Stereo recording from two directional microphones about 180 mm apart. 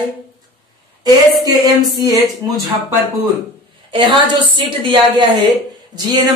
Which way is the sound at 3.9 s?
25° right (ahead or behind).